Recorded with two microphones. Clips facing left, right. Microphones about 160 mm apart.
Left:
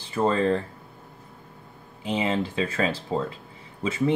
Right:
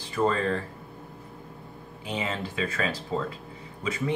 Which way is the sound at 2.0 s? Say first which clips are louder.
Left 6 dB; 25° left (ahead or behind).